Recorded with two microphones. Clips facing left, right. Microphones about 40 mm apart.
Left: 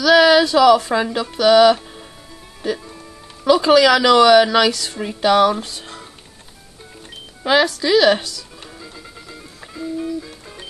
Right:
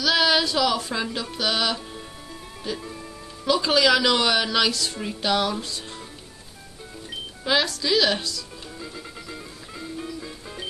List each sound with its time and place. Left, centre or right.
0.0 s music: left
3.5 s music: left
7.4 s music: left
8.8 s music: centre